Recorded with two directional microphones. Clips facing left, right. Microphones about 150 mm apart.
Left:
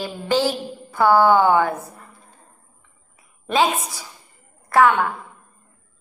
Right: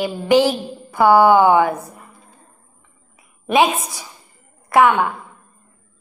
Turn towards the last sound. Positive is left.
turn(degrees=-15)  # may be behind; listen again after turning